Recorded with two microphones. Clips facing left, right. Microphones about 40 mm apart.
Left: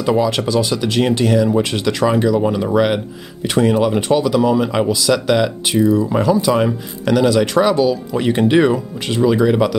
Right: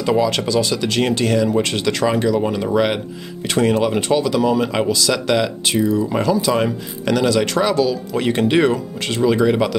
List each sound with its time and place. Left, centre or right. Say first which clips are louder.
0.5 s speech: left 1 dB; centre
7.7 s speech: left 2 dB; centre
8.1 s speech: left 2 dB; centre